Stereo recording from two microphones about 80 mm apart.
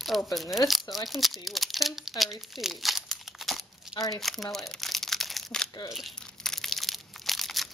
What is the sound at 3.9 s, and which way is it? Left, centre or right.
Speech, left.